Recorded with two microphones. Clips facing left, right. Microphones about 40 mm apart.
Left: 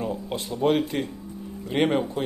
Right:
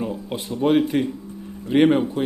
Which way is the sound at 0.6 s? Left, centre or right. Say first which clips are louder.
Right 5 dB; centre.